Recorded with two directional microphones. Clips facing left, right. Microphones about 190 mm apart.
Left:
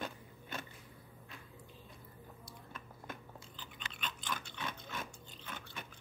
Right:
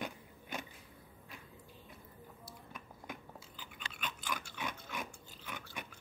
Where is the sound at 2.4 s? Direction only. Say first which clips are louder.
Right 1 dB; 10° right (ahead or behind).